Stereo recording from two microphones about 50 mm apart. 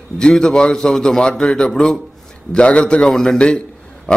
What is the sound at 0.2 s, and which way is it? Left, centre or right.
A man's voice, centre.